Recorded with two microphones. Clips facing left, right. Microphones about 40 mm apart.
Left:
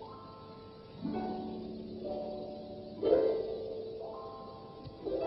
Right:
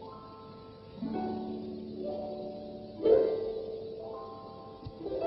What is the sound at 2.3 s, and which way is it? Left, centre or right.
Music, right.